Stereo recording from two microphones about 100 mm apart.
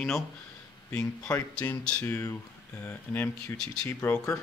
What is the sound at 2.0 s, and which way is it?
Speech, 30° left (ahead or behind).